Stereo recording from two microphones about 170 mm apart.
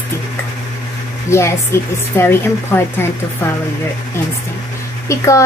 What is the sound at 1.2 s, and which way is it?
A woman's voice, 15° left (ahead or behind).